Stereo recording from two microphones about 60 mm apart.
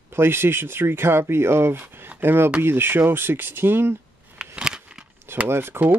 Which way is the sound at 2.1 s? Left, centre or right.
Right.